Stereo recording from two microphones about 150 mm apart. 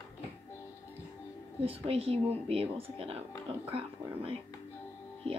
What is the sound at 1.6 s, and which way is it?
Speech, 40° right (ahead or behind).